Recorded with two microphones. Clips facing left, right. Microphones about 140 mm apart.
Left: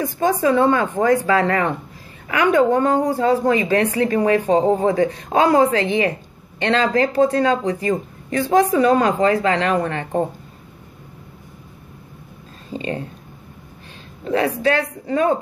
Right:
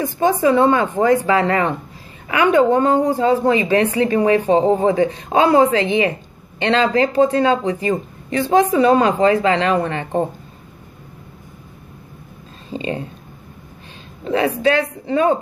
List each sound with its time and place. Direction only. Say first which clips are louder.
0.2 s speech: right 2 dB; 20° right (ahead or behind)
12.6 s a sound: right 2 dB; 20° right (ahead or behind)
14.2 s speech: right 2 dB; 20° right (ahead or behind)